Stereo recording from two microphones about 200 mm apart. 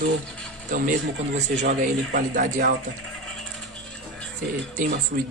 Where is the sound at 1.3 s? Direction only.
35° right (ahead or behind).